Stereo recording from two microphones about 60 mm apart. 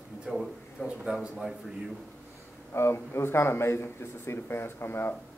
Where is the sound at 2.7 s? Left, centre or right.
Left.